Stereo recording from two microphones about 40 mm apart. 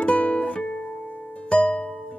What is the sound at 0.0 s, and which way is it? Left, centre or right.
Music, left.